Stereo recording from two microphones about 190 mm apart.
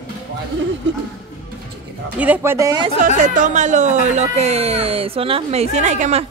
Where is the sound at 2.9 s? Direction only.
40° right (ahead or behind).